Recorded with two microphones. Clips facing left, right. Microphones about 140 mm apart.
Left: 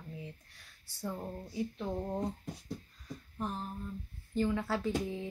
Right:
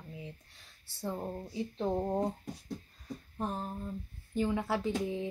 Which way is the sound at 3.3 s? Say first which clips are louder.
Right 2 dB; 35° right (ahead or behind).